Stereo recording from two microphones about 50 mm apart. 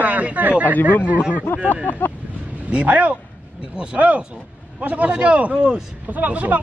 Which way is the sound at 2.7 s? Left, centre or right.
Right.